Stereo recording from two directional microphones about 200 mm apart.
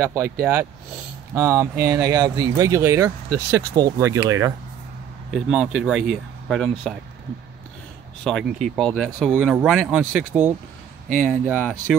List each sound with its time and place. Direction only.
0.0 s speech: 10° right (ahead or behind)
5.3 s speech: centre (ahead or behind)
8.2 s speech: 5° left (ahead or behind)